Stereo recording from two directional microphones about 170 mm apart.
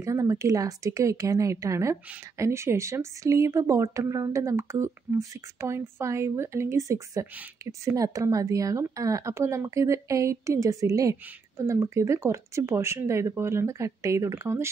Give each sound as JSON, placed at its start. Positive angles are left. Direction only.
{"t": 0.0, "sound": "speech", "side_deg": -20}